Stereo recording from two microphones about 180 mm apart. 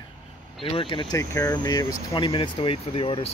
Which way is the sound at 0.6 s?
30° left (ahead or behind).